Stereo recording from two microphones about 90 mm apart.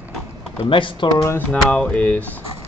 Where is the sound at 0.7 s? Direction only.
70° left (ahead or behind).